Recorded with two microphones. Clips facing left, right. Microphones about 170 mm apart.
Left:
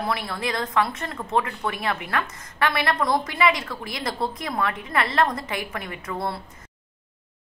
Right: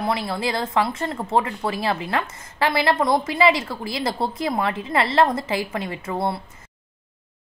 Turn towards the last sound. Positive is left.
turn(degrees=-25)  # may be behind; listen again after turning